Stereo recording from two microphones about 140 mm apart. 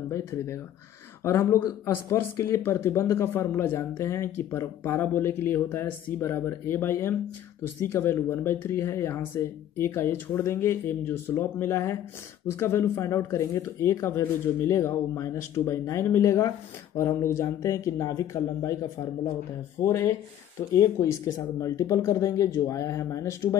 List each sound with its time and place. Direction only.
0.1 s speech: 20° left (ahead or behind)
19.8 s speech: 20° left (ahead or behind)